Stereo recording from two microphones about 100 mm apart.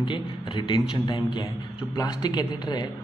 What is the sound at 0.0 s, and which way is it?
A man's voice, 55° left (ahead or behind).